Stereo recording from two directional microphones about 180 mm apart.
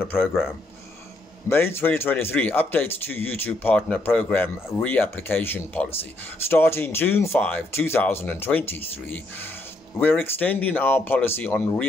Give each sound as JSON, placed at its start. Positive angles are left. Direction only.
{"t": 0.0, "sound": "speech", "side_deg": 10}
{"t": 1.5, "sound": "speech", "side_deg": 10}